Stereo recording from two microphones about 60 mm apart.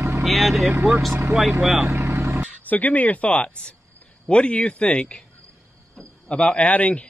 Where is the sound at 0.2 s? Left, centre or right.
Centre.